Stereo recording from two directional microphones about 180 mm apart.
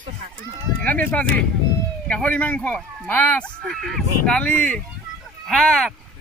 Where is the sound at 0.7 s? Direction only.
10° left (ahead or behind).